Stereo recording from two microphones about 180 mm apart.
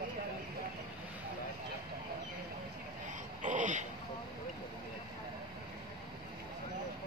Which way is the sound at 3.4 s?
45° right (ahead or behind).